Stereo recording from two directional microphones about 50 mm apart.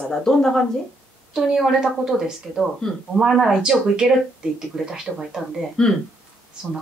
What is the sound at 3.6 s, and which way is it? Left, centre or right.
A woman's voice, centre.